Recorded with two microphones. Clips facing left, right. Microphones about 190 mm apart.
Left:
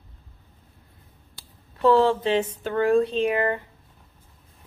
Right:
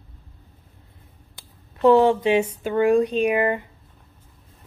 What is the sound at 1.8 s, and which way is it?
Speech, 20° right (ahead or behind).